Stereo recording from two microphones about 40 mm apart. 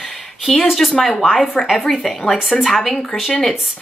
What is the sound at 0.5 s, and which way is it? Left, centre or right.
Speech, centre.